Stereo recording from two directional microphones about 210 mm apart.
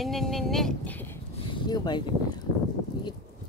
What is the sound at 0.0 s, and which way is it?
Speech, centre (ahead or behind).